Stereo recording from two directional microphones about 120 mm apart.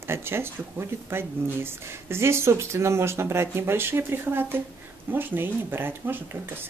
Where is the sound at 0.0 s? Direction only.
20° right (ahead or behind).